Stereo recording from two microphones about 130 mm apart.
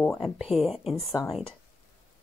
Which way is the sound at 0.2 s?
Centre (ahead or behind).